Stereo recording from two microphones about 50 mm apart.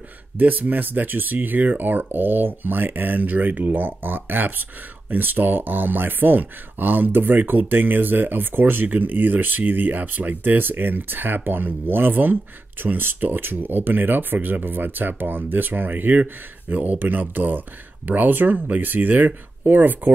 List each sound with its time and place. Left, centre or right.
0.4 s speech: right